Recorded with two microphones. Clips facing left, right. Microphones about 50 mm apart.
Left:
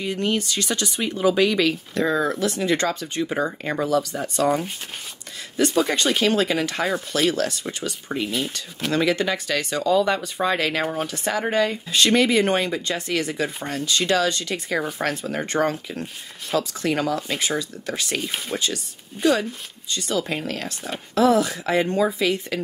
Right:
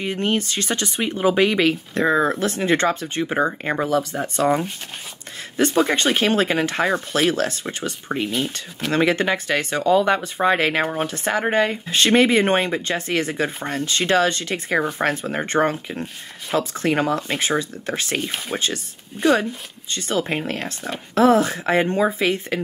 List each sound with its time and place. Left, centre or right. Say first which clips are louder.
0.0 s speech: right 2 dB; right
19.2 s speech: right 1 dB; centre
19.9 s speech: right 2 dB; right